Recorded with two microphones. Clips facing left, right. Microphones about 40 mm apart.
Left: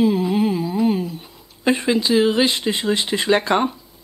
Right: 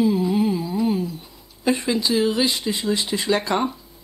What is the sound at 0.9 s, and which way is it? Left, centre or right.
Speech, left.